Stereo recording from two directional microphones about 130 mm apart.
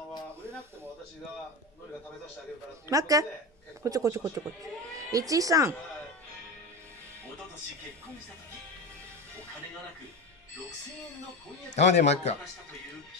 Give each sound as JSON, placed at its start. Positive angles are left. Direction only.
{"t": 2.9, "sound": "speech", "side_deg": -25}
{"t": 11.7, "sound": "speech", "side_deg": 60}